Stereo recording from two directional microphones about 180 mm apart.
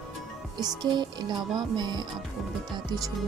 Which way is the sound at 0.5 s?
25° right (ahead or behind).